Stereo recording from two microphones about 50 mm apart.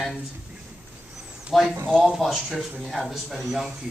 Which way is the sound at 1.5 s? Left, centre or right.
Centre.